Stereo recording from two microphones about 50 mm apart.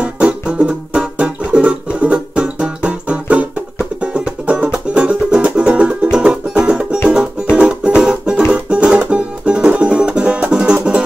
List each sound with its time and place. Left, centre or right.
0.0 s music: right
8.0 s music: centre